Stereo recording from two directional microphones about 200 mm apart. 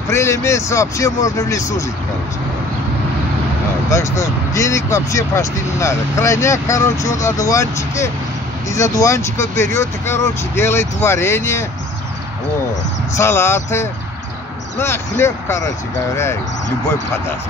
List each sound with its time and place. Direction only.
0.1 s speech: 15° left (ahead or behind)
3.9 s speech: 15° left (ahead or behind)
13.2 s speech: 10° left (ahead or behind)